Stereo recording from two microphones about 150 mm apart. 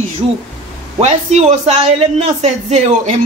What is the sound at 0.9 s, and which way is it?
A man's voice, 45° right (ahead or behind).